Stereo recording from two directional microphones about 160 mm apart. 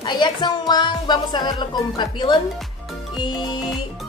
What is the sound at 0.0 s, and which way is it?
Speech, 30° left (ahead or behind).